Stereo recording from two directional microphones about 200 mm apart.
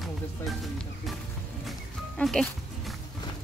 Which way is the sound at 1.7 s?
Centre (ahead or behind).